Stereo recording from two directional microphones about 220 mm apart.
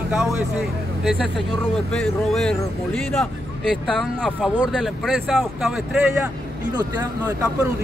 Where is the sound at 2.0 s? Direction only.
5° left (ahead or behind).